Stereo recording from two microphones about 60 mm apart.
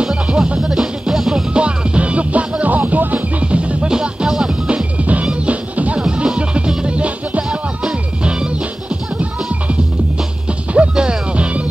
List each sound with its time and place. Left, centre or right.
0.0 s music: centre
0.6 s music: centre
10.7 s music: centre